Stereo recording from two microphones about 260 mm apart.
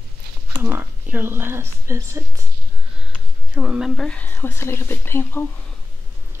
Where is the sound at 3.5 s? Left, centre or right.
Centre.